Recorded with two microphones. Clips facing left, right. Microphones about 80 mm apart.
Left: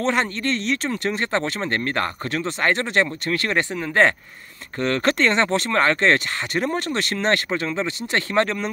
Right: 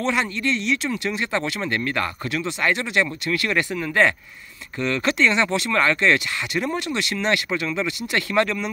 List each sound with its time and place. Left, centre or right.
0.0 s speech: left